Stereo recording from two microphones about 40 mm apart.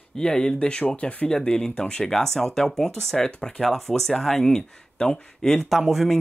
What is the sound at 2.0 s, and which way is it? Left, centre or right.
Speech, centre.